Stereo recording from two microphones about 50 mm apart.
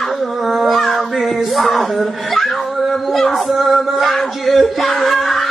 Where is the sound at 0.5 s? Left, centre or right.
Centre.